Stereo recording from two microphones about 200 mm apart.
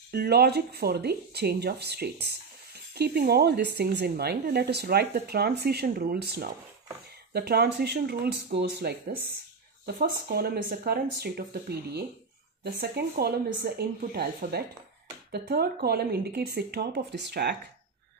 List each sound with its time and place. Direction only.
0.1 s speech: 55° right (ahead or behind)
9.9 s speech: 50° right (ahead or behind)